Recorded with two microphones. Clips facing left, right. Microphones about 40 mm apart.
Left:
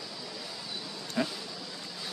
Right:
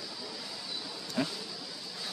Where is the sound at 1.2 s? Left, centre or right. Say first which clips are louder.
Left 2 dB; centre.